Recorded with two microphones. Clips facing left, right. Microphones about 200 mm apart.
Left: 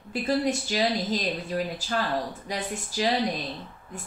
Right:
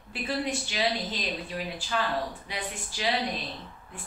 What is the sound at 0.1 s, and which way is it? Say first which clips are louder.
Speech: left 5 dB; 40° left (ahead or behind).